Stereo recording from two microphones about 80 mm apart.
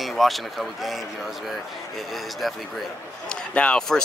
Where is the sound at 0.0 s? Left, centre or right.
Centre.